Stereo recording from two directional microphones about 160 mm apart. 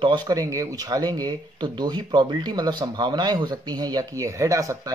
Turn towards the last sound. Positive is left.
turn(degrees=-20)  # may be behind; listen again after turning